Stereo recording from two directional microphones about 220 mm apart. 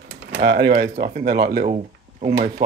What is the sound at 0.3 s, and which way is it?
Speech, 50° right (ahead or behind).